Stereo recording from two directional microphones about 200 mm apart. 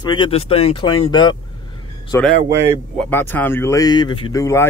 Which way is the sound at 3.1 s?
10° left (ahead or behind).